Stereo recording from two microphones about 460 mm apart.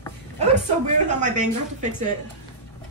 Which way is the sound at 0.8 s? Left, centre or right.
Centre.